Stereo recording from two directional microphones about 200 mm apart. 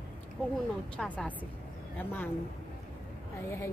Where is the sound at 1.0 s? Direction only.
5° left (ahead or behind).